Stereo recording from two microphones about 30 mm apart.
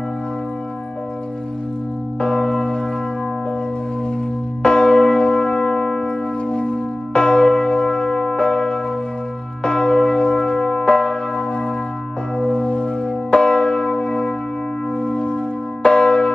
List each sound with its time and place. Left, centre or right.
2.1 s church bell: left
4.6 s church bell: left
15.0 s music: left
15.8 s church bell: left